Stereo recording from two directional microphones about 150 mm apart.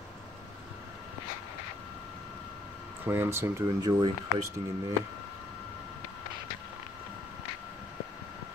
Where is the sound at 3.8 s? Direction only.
30° right (ahead or behind).